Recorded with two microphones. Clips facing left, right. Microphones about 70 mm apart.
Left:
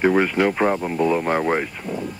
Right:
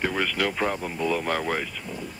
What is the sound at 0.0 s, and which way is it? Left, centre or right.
Speech, left.